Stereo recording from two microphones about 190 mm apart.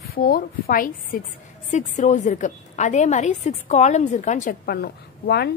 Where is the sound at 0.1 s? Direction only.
50° left (ahead or behind).